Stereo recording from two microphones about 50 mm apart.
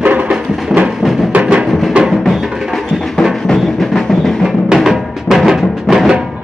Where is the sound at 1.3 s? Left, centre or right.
Right.